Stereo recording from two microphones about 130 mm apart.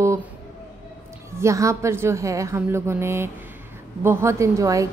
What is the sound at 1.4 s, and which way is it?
A woman's voice, 25° right (ahead or behind).